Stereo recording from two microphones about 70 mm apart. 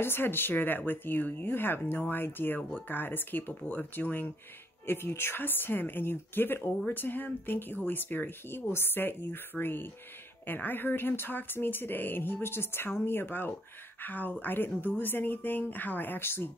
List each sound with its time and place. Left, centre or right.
0.0 s speech: left